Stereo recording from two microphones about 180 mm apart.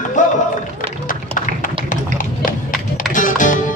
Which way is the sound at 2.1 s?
50° left (ahead or behind).